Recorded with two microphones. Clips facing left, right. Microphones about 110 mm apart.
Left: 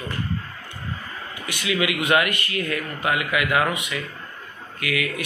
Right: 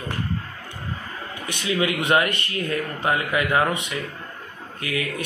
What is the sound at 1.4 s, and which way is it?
A man's voice, 35° right (ahead or behind).